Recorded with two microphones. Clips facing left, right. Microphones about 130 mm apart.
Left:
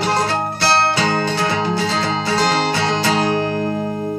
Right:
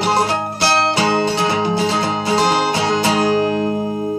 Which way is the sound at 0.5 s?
20° right (ahead or behind).